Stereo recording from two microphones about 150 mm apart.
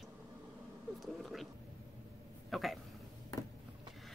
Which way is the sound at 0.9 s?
Centre (ahead or behind).